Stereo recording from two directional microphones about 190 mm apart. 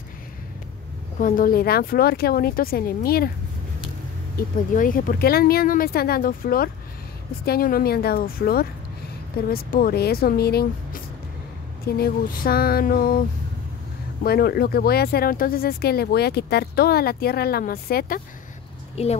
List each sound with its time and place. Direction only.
1.1 s speech: 45° left (ahead or behind)
4.4 s speech: 45° left (ahead or behind)
14.2 s speech: 55° left (ahead or behind)
19.0 s a woman's voice: 35° left (ahead or behind)